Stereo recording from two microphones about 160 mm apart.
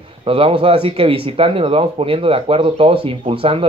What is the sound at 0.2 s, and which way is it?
Speech, 35° right (ahead or behind).